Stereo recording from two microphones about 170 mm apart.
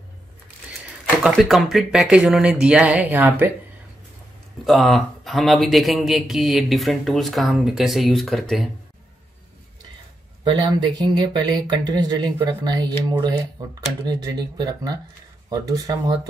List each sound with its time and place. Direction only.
1.2 s speech: centre (ahead or behind)
4.6 s speech: centre (ahead or behind)
10.7 s speech: 25° right (ahead or behind)